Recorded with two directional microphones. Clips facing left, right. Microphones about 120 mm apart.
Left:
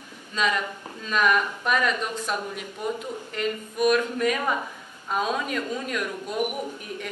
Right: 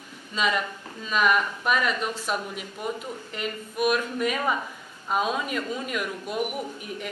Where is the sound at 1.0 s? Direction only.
5° right (ahead or behind).